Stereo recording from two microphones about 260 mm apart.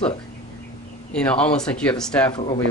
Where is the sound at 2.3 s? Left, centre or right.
Centre.